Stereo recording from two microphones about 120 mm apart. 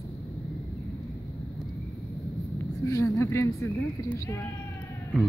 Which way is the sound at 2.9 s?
25° left (ahead or behind).